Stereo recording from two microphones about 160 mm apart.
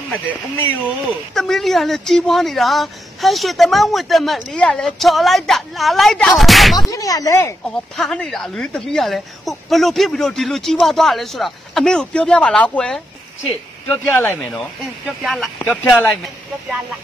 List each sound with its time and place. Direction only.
1.0 s speech: centre (ahead or behind)
6.9 s speech: 20° left (ahead or behind)
7.9 s speech: centre (ahead or behind)